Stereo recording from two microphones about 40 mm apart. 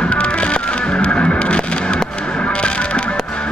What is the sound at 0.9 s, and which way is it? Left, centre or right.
Music, left.